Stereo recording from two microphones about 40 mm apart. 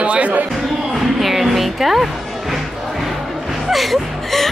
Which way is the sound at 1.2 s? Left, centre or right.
Centre.